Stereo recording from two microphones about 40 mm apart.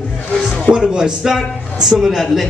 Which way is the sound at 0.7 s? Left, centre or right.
Centre.